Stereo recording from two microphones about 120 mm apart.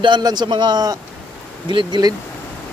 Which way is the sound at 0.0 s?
35° right (ahead or behind).